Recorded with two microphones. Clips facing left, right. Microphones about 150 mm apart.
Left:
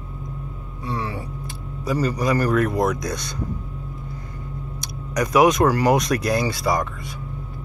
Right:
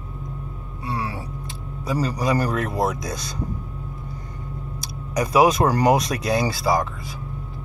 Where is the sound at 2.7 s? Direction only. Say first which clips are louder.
Left 2 dB; 25° right (ahead or behind).